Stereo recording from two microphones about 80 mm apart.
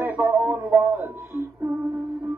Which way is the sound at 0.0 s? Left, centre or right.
Centre.